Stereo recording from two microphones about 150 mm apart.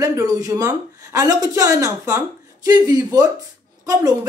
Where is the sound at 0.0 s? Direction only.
20° right (ahead or behind).